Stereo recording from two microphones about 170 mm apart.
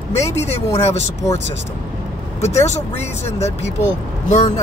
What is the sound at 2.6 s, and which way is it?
Speech, 40° left (ahead or behind).